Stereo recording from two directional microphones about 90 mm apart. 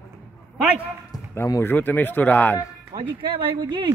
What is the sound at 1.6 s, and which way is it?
Speech, 20° left (ahead or behind).